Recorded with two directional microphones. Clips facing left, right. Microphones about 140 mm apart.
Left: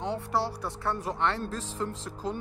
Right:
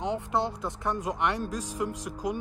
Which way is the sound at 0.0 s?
20° right (ahead or behind).